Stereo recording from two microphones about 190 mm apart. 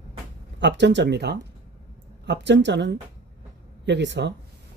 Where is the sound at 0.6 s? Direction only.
70° right (ahead or behind).